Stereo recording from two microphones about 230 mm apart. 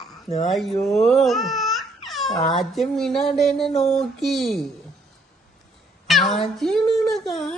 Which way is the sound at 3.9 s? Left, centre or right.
Centre.